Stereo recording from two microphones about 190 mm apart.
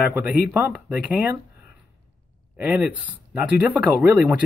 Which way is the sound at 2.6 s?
5° right (ahead or behind).